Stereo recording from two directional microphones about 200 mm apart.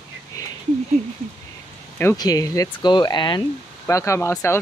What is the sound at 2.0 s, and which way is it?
Speech, 15° left (ahead or behind).